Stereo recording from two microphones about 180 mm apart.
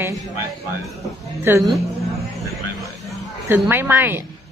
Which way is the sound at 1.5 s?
15° right (ahead or behind).